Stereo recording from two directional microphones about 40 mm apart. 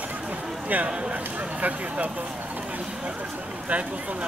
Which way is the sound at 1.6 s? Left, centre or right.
Right.